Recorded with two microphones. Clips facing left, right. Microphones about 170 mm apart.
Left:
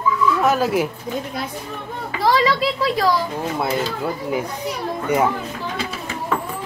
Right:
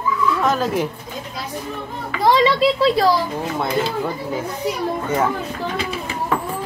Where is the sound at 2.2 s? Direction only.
25° right (ahead or behind).